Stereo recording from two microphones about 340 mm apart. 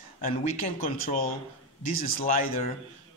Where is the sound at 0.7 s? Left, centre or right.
Left.